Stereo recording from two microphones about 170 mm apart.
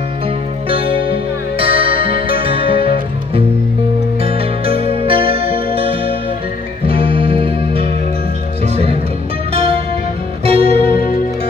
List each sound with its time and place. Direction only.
0.7 s music: 35° right (ahead or behind)
4.2 s music: 35° right (ahead or behind)
9.5 s music: 35° right (ahead or behind)